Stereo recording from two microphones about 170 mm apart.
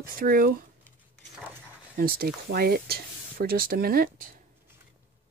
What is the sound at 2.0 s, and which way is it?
Speech, 65° right (ahead or behind).